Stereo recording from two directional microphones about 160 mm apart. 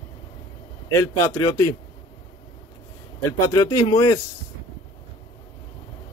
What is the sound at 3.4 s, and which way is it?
Speech, 20° left (ahead or behind).